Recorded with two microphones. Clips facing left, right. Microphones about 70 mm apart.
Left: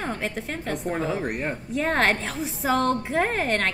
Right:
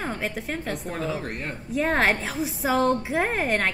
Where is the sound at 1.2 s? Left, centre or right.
Centre.